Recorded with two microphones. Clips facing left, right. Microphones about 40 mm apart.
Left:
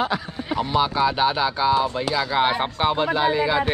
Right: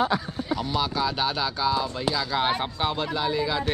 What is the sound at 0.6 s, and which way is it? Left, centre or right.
Speech, left.